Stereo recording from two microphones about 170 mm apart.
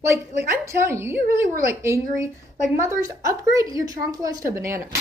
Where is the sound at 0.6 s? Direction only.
15° right (ahead or behind).